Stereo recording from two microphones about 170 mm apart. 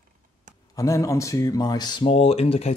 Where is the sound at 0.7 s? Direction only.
20° left (ahead or behind); by 2.7 s 35° left (ahead or behind).